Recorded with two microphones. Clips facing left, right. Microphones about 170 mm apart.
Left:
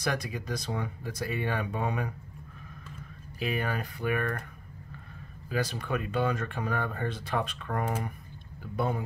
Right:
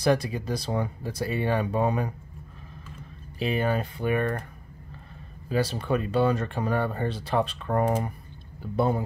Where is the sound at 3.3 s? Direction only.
25° right (ahead or behind).